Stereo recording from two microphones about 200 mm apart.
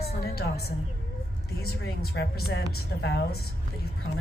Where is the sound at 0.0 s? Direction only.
50° left (ahead or behind).